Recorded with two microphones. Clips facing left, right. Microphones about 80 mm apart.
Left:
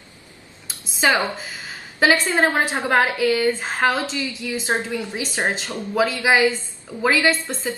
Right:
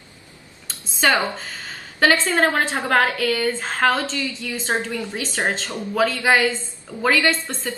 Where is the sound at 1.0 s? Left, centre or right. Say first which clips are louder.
Even; centre.